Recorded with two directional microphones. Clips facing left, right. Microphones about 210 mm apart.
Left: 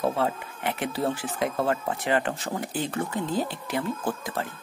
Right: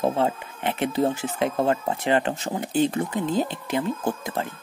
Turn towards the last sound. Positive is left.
turn(degrees=-25)  # may be behind; listen again after turning